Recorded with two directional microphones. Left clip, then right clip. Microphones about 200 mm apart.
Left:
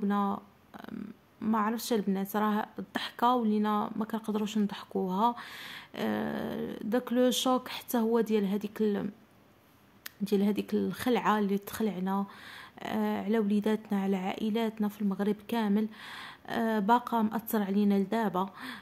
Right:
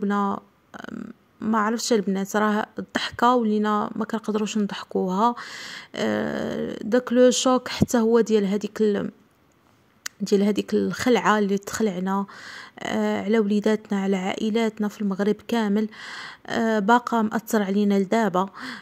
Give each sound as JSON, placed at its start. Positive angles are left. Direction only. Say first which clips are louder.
{"t": 0.0, "sound": "speech", "louder": "right 7 dB", "side_deg": -25}